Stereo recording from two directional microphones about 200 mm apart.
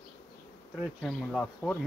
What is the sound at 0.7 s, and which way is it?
Speech, centre (ahead or behind).